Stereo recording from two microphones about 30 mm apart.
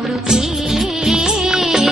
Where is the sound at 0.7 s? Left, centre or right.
Centre.